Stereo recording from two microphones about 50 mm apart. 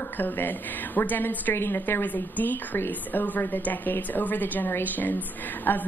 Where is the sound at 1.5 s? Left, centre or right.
Left.